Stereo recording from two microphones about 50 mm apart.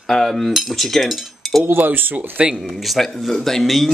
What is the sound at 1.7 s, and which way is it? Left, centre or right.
Speech, right.